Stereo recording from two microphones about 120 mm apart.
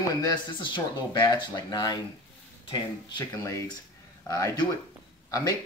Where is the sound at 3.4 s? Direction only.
25° left (ahead or behind).